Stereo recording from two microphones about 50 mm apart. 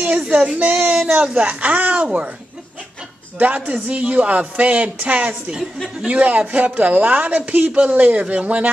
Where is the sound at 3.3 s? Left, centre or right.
Right.